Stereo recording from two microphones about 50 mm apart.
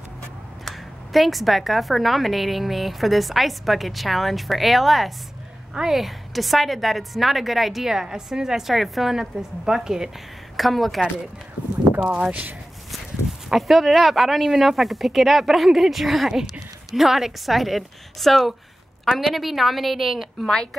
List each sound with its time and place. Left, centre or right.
0.7 s speech: centre
10.5 s a woman's voice: centre
12.0 s speech: right
13.5 s speech: centre
20.4 s a woman's voice: centre